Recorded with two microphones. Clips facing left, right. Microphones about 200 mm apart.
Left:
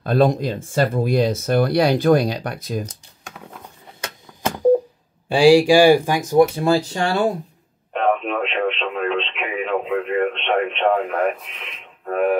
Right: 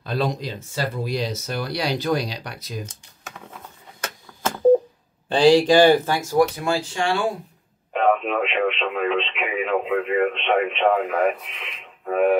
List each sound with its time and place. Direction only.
0.0 s speech: 50° left (ahead or behind)
4.0 s a sound: 15° left (ahead or behind)
5.3 s speech: 10° left (ahead or behind)
6.6 s speech: 35° left (ahead or behind)
7.9 s radio: centre (ahead or behind)